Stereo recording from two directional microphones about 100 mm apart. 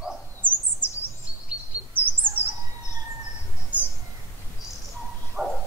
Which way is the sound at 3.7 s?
15° right (ahead or behind).